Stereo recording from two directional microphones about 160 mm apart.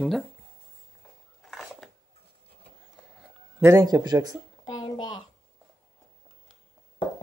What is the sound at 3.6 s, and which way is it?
Speech, 20° right (ahead or behind).